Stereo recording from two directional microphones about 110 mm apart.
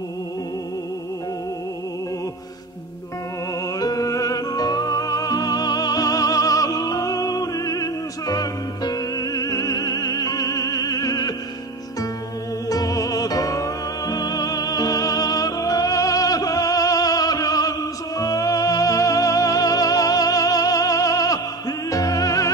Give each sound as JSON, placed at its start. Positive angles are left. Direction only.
{"t": 3.8, "sound": "music", "side_deg": 35}
{"t": 12.6, "sound": "music", "side_deg": 35}